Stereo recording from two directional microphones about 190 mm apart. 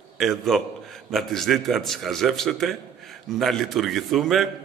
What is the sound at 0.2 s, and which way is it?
A man's voice, centre (ahead or behind).